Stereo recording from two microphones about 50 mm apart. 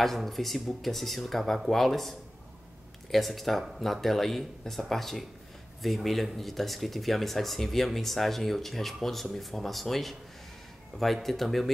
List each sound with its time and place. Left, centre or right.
0.0 s speech: centre
10.9 s speech: centre
11.2 s speech: centre